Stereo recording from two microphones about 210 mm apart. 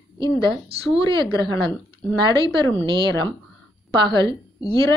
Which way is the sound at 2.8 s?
25° right (ahead or behind).